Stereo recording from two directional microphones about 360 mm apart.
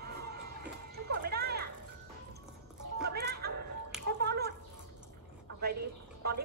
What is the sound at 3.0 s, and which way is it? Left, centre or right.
Music, right.